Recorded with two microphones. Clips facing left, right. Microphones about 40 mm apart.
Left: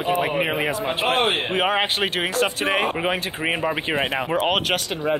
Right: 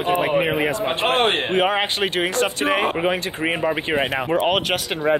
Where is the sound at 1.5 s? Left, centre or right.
Centre.